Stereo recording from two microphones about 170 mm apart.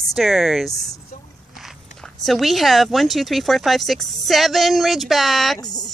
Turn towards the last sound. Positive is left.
turn(degrees=25)  # may be behind; listen again after turning